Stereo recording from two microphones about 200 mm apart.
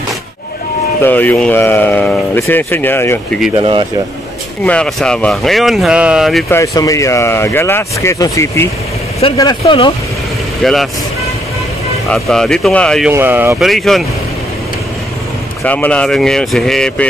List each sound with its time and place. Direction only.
1.0 s speech: 10° left (ahead or behind)
3.5 s speech: 25° right (ahead or behind)
4.6 s speech: 5° left (ahead or behind)
6.5 s speech: 15° left (ahead or behind)
10.6 s speech: centre (ahead or behind)
12.1 s speech: 5° left (ahead or behind)
13.1 s speech: 10° right (ahead or behind)
13.7 s speech: centre (ahead or behind)
15.6 s speech: 5° left (ahead or behind)